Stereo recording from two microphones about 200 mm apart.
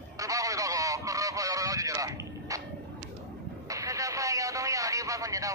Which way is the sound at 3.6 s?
15° right (ahead or behind).